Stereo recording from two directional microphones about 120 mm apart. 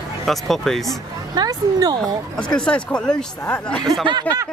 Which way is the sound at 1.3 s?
35° right (ahead or behind).